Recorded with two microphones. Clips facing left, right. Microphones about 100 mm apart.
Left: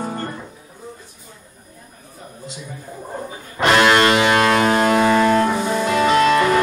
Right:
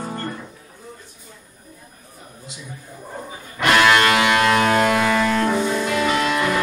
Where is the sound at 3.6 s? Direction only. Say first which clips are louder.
Left 2 dB; 25° left (ahead or behind).